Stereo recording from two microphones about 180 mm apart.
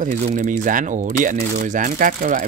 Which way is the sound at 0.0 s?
45° right (ahead or behind).